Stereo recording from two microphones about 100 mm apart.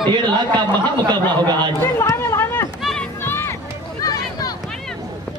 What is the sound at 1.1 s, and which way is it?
Speech, 45° right (ahead or behind).